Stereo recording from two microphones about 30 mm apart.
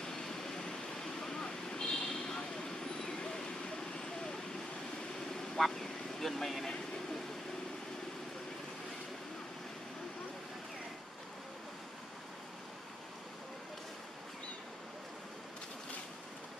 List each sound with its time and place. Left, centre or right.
0.0 s vehicle: centre
5.6 s speech: centre